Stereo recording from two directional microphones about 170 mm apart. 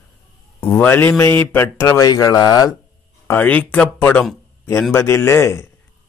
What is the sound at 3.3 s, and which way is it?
Speech, 10° left (ahead or behind).